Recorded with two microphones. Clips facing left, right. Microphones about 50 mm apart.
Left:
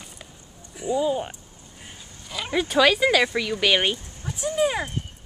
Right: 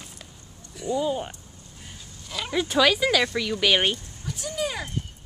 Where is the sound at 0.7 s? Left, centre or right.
Centre.